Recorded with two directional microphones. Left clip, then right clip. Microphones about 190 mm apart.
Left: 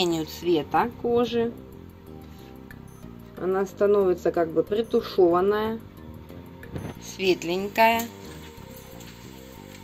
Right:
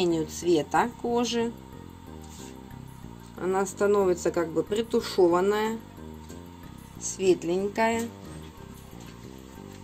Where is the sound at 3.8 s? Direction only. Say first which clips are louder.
Left 3 dB; 10° right (ahead or behind).